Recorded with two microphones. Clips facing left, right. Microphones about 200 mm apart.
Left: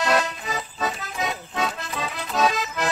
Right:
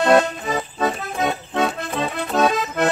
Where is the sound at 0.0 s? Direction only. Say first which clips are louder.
Right 7 dB; 55° right (ahead or behind).